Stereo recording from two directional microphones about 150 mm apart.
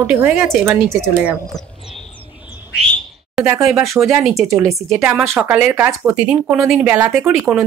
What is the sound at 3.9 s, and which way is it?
Speech, 20° right (ahead or behind).